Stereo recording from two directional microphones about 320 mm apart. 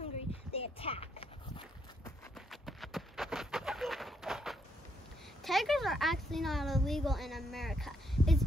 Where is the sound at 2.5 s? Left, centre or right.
Centre.